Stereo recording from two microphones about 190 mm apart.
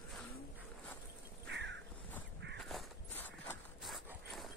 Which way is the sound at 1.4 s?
70° right (ahead or behind).